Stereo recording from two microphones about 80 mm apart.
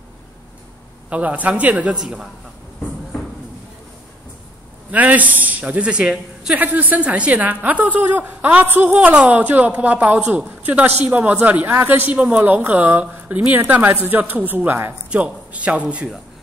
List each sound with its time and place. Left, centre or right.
1.1 s a man's voice: centre
4.9 s a man's voice: centre